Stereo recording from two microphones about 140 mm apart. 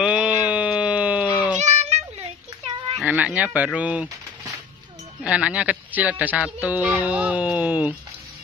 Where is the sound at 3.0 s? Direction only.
5° right (ahead or behind).